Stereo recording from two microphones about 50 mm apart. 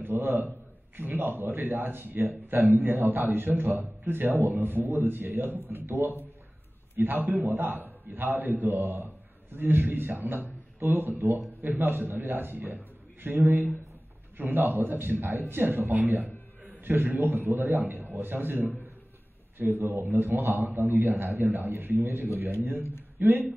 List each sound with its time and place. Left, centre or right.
0.0 s a man's voice: right
8.7 s a man's voice: right
13.4 s a man's voice: right
14.3 s a man's voice: right